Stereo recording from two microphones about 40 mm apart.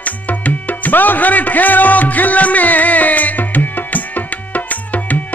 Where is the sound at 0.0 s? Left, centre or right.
Left.